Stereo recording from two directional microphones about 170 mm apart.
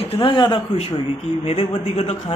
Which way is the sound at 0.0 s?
30° left (ahead or behind).